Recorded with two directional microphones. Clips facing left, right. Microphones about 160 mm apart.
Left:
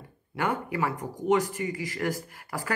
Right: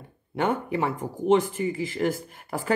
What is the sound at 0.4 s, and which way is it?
Speech, 25° right (ahead or behind).